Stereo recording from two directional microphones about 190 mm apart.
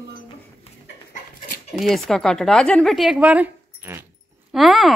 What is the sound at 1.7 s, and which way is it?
A woman's voice, centre (ahead or behind).